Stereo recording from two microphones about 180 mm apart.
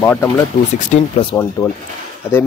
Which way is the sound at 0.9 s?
30° left (ahead or behind).